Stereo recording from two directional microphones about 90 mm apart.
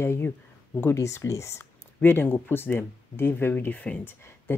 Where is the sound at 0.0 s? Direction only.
30° left (ahead or behind).